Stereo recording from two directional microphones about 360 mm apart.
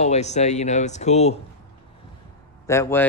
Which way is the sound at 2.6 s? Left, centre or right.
Centre.